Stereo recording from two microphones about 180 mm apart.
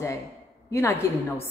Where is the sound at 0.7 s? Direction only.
15° left (ahead or behind).